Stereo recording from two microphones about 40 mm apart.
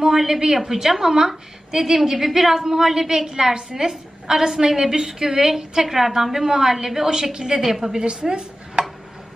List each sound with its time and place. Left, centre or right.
0.0 s a woman's voice: centre
8.0 s speech: right